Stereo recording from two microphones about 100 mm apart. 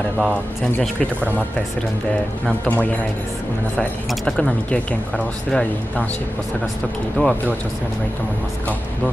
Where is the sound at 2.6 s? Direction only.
15° left (ahead or behind).